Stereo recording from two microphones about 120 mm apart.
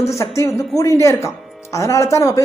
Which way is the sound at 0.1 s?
25° left (ahead or behind).